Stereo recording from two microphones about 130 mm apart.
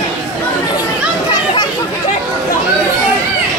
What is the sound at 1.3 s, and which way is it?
Chatter, 30° left (ahead or behind).